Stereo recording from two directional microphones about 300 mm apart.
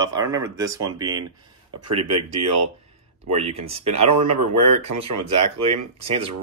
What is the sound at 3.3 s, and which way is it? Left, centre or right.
Speech, centre.